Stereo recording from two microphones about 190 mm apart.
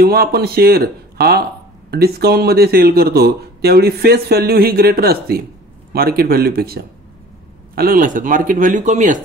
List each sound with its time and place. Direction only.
0.0 s a man's voice: 55° right (ahead or behind); by 9.2 s 40° right (ahead or behind)